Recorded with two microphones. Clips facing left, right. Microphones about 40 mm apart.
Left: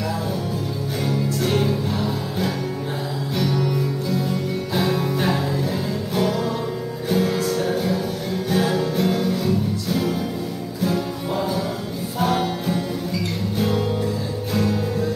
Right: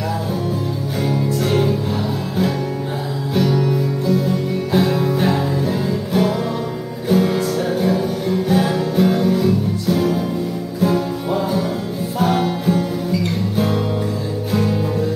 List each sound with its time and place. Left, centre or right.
1.0 s music: centre
3.3 s music: centre
14.5 s music: centre